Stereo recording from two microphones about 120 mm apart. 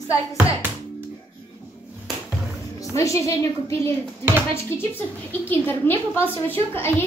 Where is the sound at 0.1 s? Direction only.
25° left (ahead or behind).